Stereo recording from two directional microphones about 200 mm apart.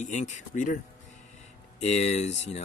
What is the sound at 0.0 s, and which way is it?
Speech, 35° left (ahead or behind).